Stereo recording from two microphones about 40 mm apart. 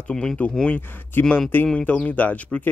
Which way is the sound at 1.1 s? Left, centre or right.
Left.